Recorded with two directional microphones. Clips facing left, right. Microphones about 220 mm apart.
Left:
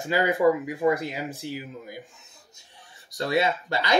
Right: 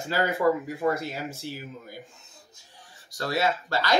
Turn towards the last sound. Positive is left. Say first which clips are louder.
# even
turn(degrees=20)  # may be behind; listen again after turning